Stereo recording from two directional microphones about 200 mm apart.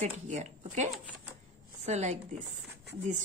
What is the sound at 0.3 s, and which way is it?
Speech, 35° right (ahead or behind).